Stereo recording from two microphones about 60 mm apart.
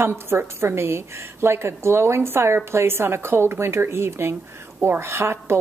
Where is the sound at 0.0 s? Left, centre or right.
Right.